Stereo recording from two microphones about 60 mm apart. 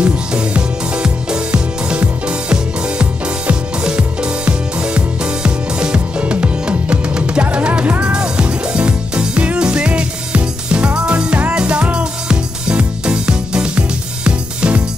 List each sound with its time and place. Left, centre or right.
0.0 s music: centre